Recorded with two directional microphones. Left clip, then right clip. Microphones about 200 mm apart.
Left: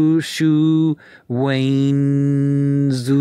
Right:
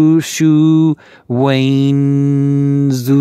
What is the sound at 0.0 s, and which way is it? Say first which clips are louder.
Mantra: right 5 dB; 30° right (ahead or behind).